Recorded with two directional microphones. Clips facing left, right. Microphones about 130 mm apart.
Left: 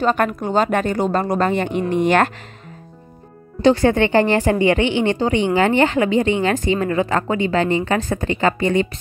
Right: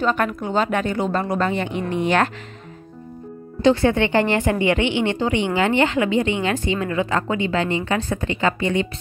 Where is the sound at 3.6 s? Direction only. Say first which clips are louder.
Left 2 dB; 35° left (ahead or behind).